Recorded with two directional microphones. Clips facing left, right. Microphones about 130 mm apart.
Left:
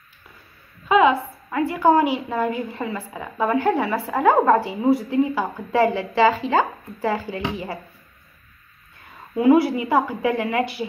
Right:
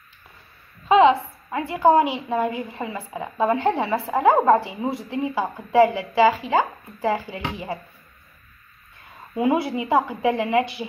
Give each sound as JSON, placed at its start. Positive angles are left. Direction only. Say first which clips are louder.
{"t": 0.8, "sound": "a woman's voice", "louder": "right 1 dB", "side_deg": -25}
{"t": 9.4, "sound": "a woman's voice", "louder": "left 5 dB", "side_deg": -20}